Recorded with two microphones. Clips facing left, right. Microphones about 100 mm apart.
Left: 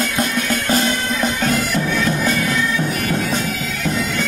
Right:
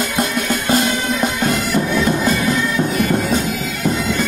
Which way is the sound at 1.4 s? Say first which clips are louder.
Right 1 dB; 10° right (ahead or behind).